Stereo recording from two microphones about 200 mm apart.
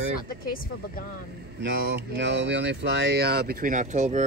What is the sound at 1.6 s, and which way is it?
Speech, 55° right (ahead or behind).